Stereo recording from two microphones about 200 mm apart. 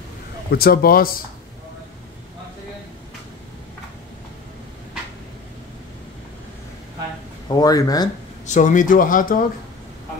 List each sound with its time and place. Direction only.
0.5 s speech: 50° left (ahead or behind)
7.4 s speech: 20° left (ahead or behind)
8.5 s speech: 40° left (ahead or behind)